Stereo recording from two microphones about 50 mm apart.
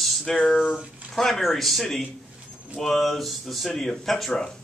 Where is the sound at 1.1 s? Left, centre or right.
Centre.